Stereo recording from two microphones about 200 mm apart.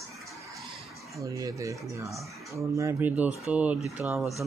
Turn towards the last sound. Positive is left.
turn(degrees=-10)  # may be behind; listen again after turning